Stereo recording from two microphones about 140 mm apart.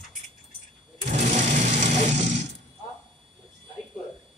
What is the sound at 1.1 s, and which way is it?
Sewing machine, 60° right (ahead or behind).